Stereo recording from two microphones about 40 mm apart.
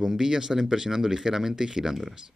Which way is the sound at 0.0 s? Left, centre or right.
Centre.